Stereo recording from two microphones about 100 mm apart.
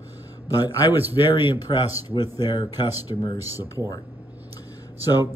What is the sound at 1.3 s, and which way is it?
Speech, 55° left (ahead or behind).